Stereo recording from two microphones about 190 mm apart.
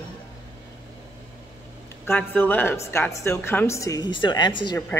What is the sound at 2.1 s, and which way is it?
A woman's voice, 10° left (ahead or behind).